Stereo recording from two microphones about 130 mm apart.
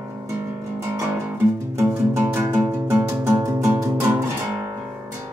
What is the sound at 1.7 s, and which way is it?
Music, 20° right (ahead or behind).